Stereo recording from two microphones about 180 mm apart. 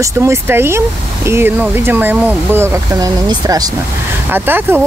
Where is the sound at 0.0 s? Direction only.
15° right (ahead or behind).